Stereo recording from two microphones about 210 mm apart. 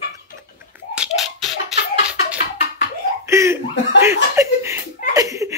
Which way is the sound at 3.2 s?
15° right (ahead or behind).